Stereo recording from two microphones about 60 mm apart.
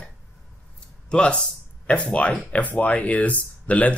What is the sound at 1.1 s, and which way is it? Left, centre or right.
Speech, centre.